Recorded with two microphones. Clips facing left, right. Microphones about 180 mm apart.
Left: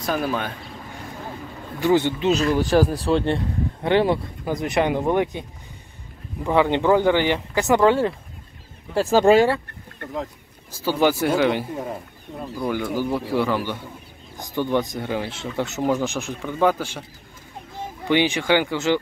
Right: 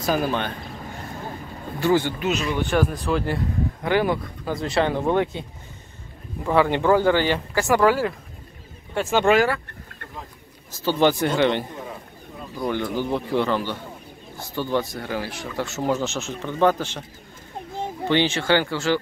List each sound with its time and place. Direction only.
0.0 s speech: centre (ahead or behind)
1.8 s speech: 20° left (ahead or behind)
6.4 s speech: 20° left (ahead or behind)
10.7 s speech: 10° left (ahead or behind)
18.0 s speech: 15° left (ahead or behind)